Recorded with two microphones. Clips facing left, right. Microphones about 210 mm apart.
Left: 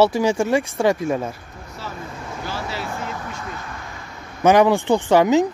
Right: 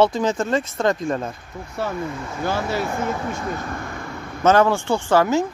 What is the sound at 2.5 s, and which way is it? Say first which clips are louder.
Speech: right 7 dB; 50° right (ahead or behind).